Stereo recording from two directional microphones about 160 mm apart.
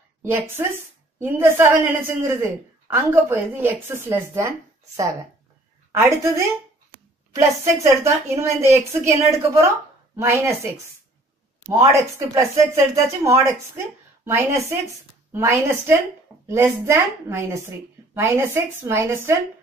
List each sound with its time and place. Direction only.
0.2 s speech: 15° right (ahead or behind)
11.6 s speech: 15° right (ahead or behind)